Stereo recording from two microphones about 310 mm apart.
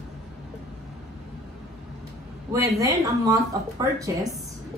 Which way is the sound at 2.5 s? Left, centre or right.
Centre.